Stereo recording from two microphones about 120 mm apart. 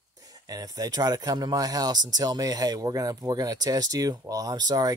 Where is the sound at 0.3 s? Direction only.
30° right (ahead or behind).